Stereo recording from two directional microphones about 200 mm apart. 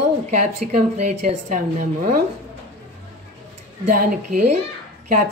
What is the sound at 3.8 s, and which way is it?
Speech, 45° right (ahead or behind).